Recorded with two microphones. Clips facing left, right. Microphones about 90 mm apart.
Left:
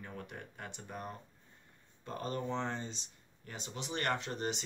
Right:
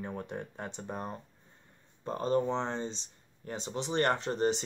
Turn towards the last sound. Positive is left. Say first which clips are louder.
# right 8 dB
turn(degrees=-35)  # may be behind; listen again after turning